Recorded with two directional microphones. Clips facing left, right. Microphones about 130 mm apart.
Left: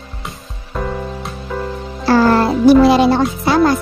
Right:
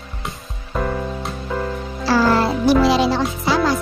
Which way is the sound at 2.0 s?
55° left (ahead or behind).